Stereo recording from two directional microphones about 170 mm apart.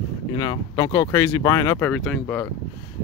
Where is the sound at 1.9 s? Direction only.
5° left (ahead or behind).